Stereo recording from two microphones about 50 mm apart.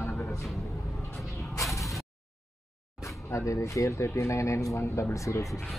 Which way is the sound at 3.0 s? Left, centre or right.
Left.